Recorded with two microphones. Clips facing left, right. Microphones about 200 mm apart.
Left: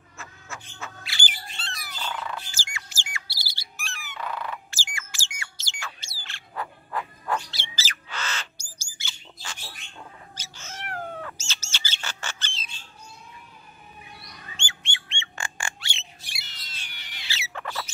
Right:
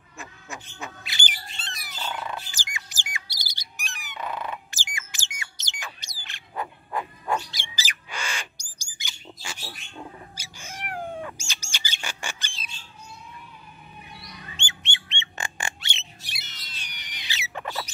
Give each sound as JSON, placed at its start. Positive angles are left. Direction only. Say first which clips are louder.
{"t": 0.2, "sound": "bird", "louder": "right 2 dB", "side_deg": -15}
{"t": 5.4, "sound": "a sound", "louder": "even", "side_deg": -20}
{"t": 14.6, "sound": "bird", "louder": "right 1 dB", "side_deg": -20}